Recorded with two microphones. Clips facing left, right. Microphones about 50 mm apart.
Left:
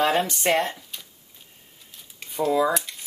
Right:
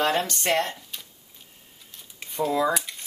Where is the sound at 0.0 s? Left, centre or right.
Centre.